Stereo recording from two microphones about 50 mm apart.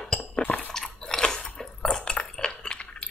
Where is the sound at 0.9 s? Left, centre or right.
Centre.